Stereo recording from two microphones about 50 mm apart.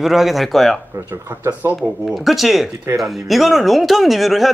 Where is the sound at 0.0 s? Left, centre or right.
Centre.